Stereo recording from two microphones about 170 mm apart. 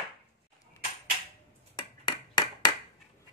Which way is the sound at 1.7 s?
25° left (ahead or behind).